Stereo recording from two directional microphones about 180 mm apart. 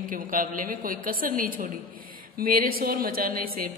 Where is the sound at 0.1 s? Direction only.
50° right (ahead or behind).